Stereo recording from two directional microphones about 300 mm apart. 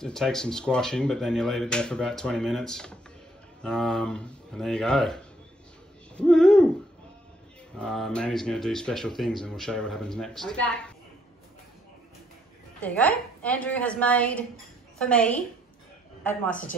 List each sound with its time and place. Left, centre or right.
0.0 s speech: centre
6.1 s hoot: centre
7.8 s speech: centre
12.8 s a woman's voice: centre
16.4 s a woman's voice: left